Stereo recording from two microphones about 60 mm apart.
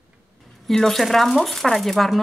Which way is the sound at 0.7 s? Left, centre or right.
Centre.